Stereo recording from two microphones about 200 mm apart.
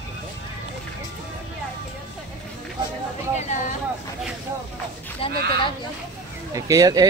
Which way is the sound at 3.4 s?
35° left (ahead or behind).